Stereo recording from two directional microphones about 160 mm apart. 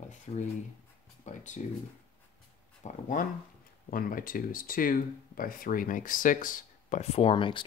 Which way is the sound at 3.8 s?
60° left (ahead or behind).